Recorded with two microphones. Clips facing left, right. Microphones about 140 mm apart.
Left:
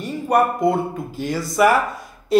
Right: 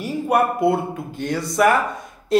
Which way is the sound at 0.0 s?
5° right (ahead or behind).